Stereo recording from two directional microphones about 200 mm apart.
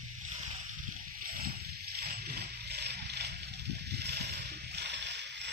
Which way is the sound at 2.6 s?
55° right (ahead or behind).